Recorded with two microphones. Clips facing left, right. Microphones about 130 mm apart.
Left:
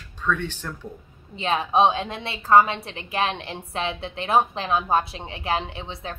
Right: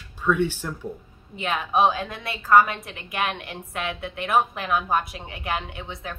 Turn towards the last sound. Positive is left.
turn(degrees=30)  # may be behind; listen again after turning